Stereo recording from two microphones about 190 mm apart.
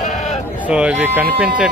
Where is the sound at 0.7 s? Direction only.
5° right (ahead or behind).